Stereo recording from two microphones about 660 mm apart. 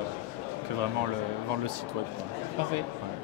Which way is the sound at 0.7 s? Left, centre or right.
Right.